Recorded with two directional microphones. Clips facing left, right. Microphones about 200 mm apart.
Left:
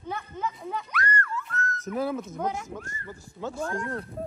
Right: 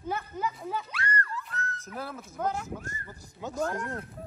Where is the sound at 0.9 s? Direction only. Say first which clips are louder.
Left 3 dB; 35° right (ahead or behind).